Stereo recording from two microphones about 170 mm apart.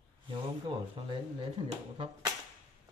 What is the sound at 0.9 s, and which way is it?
Speech, 30° right (ahead or behind).